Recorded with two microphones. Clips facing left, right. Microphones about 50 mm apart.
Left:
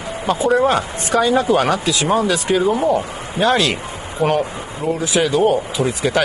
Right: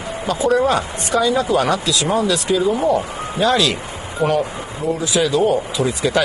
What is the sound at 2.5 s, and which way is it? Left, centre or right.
A man's voice, left.